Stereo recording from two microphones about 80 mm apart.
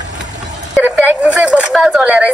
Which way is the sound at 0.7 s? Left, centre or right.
Centre.